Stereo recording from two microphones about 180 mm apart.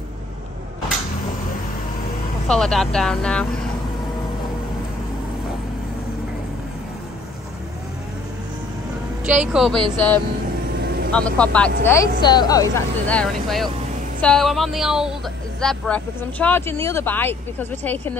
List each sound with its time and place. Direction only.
2.4 s speech: 5° left (ahead or behind)
9.2 s speech: 5° right (ahead or behind)
9.9 s speech: 10° left (ahead or behind)
12.0 s speech: 25° left (ahead or behind)
13.1 s speech: 5° left (ahead or behind)